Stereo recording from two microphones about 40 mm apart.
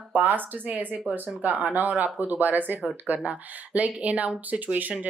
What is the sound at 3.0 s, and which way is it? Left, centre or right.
Speech, right.